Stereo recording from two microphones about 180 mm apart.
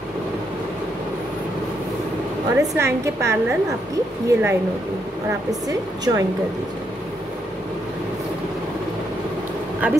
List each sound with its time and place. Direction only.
2.5 s a woman's voice: 15° right (ahead or behind)
5.7 s speech: 20° right (ahead or behind)